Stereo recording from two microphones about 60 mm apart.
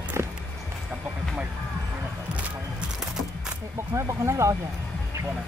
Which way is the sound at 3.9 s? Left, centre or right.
Right.